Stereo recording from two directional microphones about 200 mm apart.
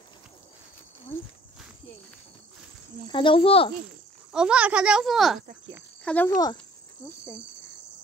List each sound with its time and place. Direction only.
3.1 s speech: 25° left (ahead or behind)
4.3 s a child's voice: 5° right (ahead or behind)